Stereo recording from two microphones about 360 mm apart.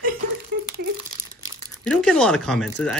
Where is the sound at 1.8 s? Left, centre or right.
Centre.